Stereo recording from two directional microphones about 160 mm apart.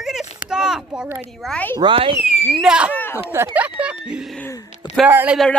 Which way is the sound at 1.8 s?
35° right (ahead or behind).